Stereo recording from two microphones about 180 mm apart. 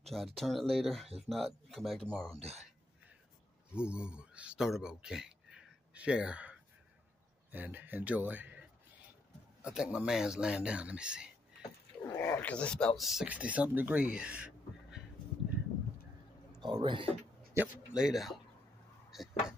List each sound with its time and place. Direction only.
0.1 s speech: centre (ahead or behind)
3.7 s speech: 5° right (ahead or behind)
12.0 s speech: 15° left (ahead or behind); by 15.0 s 5° right (ahead or behind)
16.6 s speech: 25° right (ahead or behind)
17.6 s speech: 5° right (ahead or behind)